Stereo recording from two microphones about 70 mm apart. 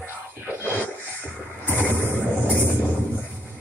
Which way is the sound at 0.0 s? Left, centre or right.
Right.